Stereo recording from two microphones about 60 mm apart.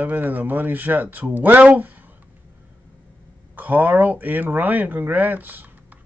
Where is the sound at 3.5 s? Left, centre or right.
Right.